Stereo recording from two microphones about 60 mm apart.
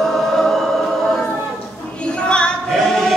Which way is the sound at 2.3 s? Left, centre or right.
Centre.